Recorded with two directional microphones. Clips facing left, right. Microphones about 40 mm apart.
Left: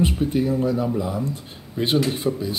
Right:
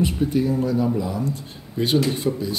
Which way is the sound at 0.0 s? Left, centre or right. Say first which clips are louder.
Even; left.